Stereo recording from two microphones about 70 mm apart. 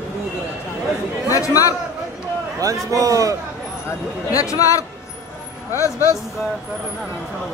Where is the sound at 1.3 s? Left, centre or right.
Left.